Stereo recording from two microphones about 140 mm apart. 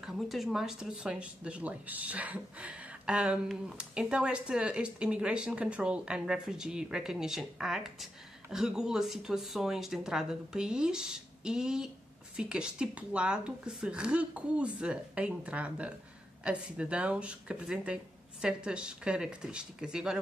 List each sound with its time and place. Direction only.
0.0 s speech: centre (ahead or behind)